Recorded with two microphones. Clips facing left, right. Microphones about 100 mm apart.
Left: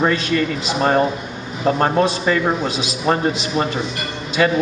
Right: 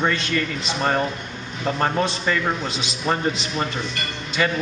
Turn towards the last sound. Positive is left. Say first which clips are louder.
# left 6 dB
turn(degrees=5)  # may be behind; listen again after turning